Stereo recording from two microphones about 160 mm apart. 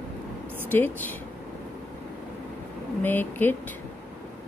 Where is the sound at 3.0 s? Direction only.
10° left (ahead or behind).